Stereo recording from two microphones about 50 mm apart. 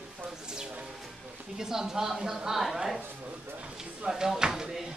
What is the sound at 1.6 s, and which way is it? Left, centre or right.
A woman's voice, centre.